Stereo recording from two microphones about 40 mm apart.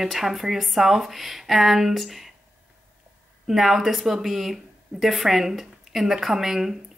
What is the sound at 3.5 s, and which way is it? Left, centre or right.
Speech, centre.